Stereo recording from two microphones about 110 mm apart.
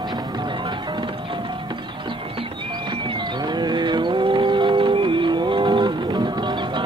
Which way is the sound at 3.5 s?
40° right (ahead or behind).